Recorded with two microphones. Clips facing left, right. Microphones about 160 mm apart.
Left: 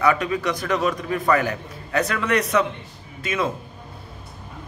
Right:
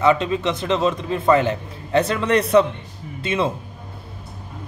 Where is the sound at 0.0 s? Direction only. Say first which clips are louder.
Right 3 dB; 25° right (ahead or behind).